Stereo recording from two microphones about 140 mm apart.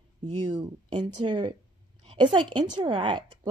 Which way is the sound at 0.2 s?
55° right (ahead or behind).